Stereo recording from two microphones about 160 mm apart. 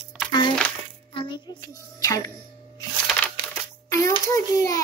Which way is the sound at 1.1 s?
30° left (ahead or behind).